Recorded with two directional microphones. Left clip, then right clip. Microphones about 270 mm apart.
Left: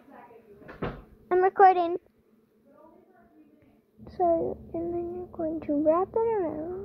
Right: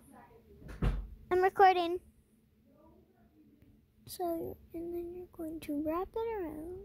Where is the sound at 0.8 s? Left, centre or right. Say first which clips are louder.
Left 6 dB; right.